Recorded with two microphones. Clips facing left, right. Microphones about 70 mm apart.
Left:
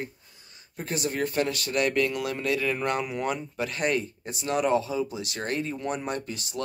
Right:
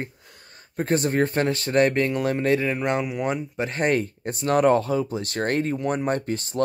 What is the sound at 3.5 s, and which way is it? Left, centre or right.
Speech, right.